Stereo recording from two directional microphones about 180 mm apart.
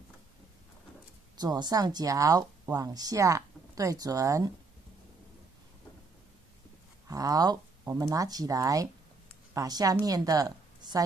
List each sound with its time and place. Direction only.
1.3 s speech: 25° right (ahead or behind)
7.1 s a woman's voice: 20° right (ahead or behind)